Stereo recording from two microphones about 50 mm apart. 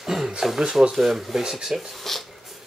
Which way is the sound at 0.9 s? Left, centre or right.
Centre.